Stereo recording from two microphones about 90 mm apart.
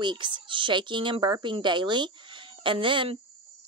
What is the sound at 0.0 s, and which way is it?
Speech, 60° right (ahead or behind).